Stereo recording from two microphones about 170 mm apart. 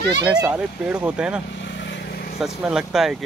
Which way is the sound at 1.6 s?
90° left.